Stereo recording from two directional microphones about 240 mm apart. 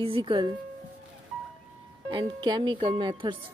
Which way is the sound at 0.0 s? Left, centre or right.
Right.